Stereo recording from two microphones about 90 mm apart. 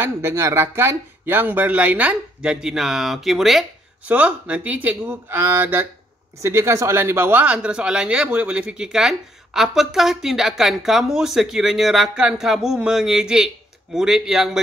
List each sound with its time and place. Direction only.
0.0 s speech: 30° right (ahead or behind); by 3.6 s centre (ahead or behind)
4.1 s speech: 15° right (ahead or behind)